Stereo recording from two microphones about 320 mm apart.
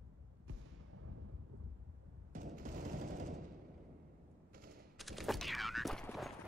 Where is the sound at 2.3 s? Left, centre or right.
Right.